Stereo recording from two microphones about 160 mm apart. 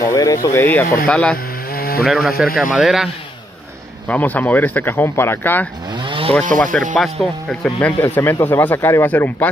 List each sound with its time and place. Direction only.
0.0 s speech: 20° left (ahead or behind)
1.7 s a sound: 70° left (ahead or behind)
2.0 s a man's voice: centre (ahead or behind)
4.1 s speech: 10° left (ahead or behind)
6.0 s chainsaw: 35° right (ahead or behind)
7.0 s speech: centre (ahead or behind)